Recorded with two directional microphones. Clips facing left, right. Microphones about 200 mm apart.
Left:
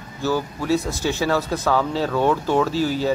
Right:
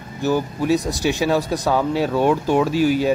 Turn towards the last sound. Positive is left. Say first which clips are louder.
# right 4 dB
turn(degrees=-15)  # may be behind; listen again after turning